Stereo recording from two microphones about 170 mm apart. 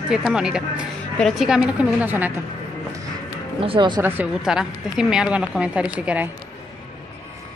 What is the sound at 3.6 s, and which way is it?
Speech, 30° right (ahead or behind).